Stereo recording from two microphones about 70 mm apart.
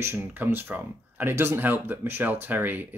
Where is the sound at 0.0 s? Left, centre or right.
Right.